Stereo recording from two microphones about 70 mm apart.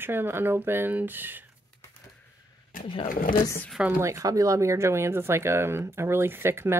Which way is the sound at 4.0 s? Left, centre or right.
Right.